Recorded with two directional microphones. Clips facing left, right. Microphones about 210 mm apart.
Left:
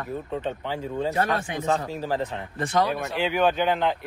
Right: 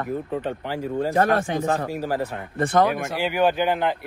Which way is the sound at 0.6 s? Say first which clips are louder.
Right 3 dB; 10° right (ahead or behind).